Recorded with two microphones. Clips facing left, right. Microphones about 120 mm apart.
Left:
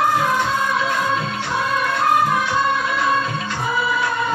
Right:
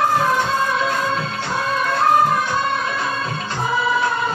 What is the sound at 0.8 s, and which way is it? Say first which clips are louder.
Music of bollywood: even; 35° right (ahead or behind).